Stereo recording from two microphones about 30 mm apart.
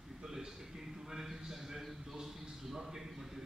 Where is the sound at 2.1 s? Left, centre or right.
Centre.